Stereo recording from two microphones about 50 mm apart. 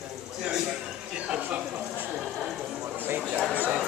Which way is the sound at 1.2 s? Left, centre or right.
Right.